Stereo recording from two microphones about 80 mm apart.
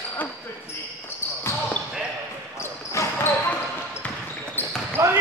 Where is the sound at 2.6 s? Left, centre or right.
Left.